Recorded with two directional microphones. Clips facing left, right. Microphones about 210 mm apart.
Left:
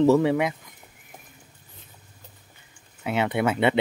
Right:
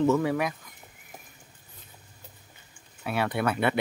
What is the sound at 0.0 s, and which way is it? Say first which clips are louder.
Speech: left 5 dB; 30° left (ahead or behind).